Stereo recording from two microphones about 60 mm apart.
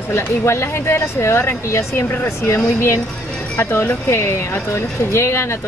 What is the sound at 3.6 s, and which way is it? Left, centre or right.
Speech, left.